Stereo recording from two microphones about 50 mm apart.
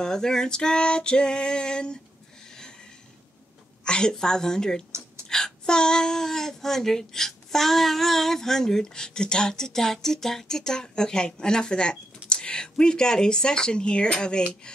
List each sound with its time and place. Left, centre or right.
0.0 s speech: centre
3.8 s speech: centre